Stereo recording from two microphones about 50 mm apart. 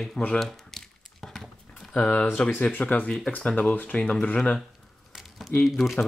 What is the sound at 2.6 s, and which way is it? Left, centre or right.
Speech, left.